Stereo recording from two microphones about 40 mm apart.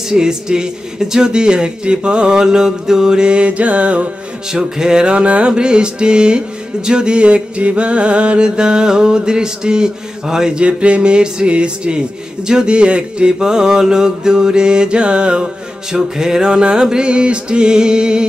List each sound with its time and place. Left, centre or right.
0.1 s speech: centre; by 4.1 s right
4.5 s speech: centre
10.6 s speech: right